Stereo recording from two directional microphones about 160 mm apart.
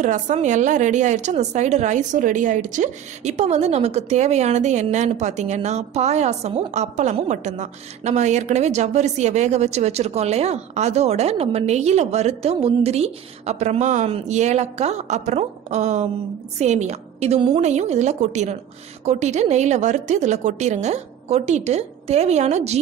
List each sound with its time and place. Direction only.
0.0 s a woman's voice: 50° right (ahead or behind)